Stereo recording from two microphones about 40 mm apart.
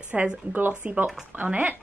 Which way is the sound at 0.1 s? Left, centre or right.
Right.